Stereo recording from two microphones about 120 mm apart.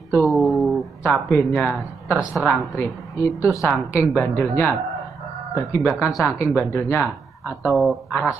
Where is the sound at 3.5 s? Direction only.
25° left (ahead or behind).